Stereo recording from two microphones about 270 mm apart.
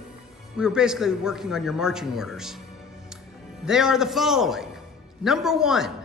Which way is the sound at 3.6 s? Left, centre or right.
Centre.